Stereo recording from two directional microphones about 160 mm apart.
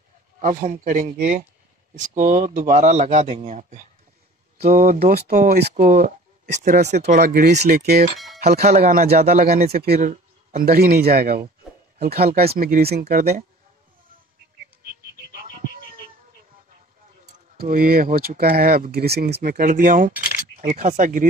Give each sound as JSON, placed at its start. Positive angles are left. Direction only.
{"t": 0.4, "sound": "a man's voice", "side_deg": -50}
{"t": 4.6, "sound": "a man's voice", "side_deg": -65}
{"t": 6.9, "sound": "speech", "side_deg": -80}
{"t": 7.6, "sound": "speech", "side_deg": -80}
{"t": 17.6, "sound": "speech", "side_deg": -65}